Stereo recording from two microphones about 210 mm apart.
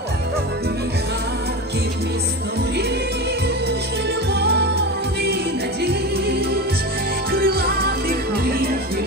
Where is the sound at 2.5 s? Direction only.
50° right (ahead or behind).